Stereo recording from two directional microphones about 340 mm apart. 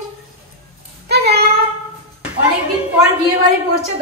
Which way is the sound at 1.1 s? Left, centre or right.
Right.